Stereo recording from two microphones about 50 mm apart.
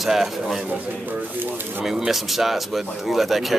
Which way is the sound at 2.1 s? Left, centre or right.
Centre.